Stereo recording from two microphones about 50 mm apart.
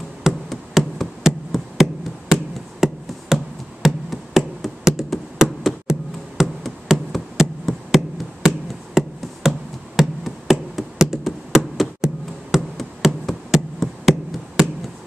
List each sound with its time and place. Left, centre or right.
0.5 s hammer: centre
2.8 s a sound: centre
3.3 s music: centre
3.8 s a sound: centre
9.4 s music: centre
9.9 s hammer: centre
11.0 s hands: centre
13.5 s hammer: centre